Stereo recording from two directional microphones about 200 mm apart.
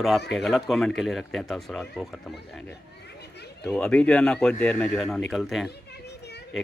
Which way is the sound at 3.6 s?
5° left (ahead or behind).